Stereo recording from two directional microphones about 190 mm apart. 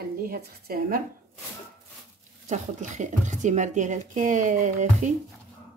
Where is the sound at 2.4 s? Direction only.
40° right (ahead or behind).